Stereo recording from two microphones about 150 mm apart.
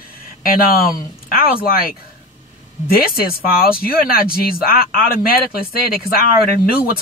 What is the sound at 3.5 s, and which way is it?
A man's voice, 80° left.